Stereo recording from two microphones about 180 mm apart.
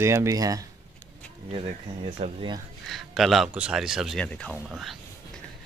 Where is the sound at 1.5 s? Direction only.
30° right (ahead or behind).